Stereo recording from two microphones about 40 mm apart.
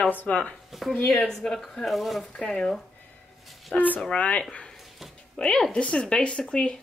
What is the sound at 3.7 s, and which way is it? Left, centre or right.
Speech, left.